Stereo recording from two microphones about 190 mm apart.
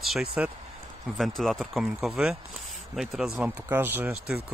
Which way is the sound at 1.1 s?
Centre (ahead or behind).